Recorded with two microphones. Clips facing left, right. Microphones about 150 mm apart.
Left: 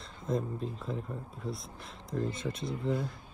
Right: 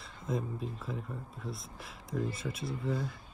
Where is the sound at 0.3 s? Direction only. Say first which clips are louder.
Left 3 dB; centre (ahead or behind).